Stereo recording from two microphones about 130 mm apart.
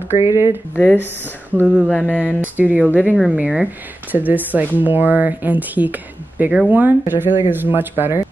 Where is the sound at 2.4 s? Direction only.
10° right (ahead or behind).